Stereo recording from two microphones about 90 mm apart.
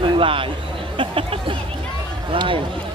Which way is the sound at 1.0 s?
75° right (ahead or behind).